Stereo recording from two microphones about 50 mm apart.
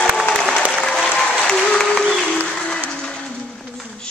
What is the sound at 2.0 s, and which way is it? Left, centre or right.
Applause, centre.